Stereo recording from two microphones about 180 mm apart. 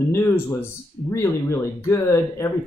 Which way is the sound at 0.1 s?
15° left (ahead or behind).